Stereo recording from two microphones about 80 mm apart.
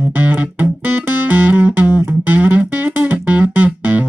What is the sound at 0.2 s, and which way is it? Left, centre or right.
Music, centre.